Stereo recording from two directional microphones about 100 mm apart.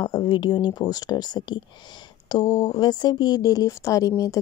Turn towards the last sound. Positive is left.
turn(degrees=30)  # may be behind; listen again after turning